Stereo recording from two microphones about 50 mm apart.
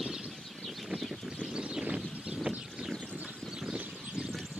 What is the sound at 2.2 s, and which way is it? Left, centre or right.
Vehicle, right.